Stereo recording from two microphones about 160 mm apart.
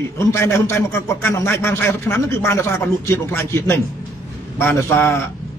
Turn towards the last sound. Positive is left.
turn(degrees=15)  # may be behind; listen again after turning